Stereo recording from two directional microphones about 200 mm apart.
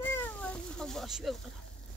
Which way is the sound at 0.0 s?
10° left (ahead or behind).